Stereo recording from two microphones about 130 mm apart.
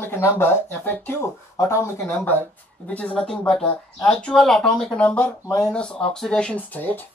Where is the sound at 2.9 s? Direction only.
10° left (ahead or behind).